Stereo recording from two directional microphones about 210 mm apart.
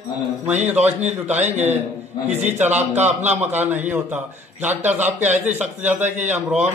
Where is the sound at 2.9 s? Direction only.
35° right (ahead or behind).